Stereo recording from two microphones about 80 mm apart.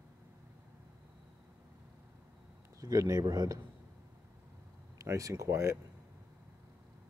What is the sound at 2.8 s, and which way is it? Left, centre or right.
Speech, right.